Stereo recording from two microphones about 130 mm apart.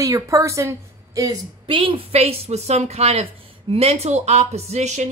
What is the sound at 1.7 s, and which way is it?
Speech, 40° right (ahead or behind).